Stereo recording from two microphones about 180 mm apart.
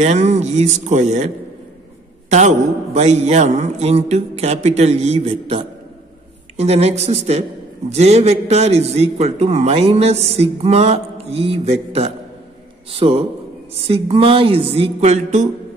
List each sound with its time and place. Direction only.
0.0 s a man's voice: 40° right (ahead or behind)